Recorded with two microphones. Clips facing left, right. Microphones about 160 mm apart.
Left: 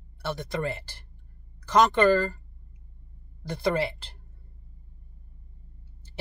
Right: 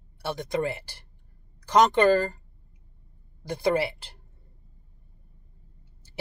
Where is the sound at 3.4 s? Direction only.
15° right (ahead or behind).